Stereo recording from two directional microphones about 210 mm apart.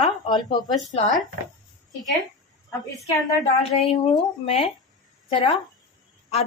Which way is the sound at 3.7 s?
30° left (ahead or behind).